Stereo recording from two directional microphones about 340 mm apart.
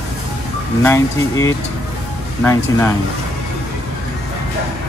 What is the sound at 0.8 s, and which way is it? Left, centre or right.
Speech, centre.